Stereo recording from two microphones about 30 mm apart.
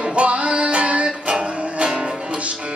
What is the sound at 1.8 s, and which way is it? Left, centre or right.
Music, right.